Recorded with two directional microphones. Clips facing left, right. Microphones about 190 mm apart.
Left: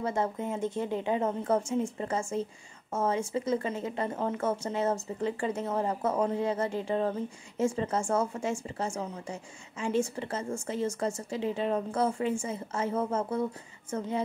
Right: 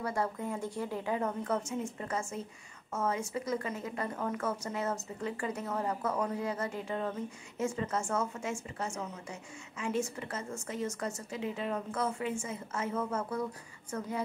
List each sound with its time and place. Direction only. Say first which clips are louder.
0.0 s speech: left 4 dB; 25° left (ahead or behind)